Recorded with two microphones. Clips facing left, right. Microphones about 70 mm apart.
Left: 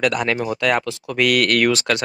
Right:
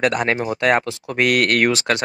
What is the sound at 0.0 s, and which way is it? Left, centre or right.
Speech, right.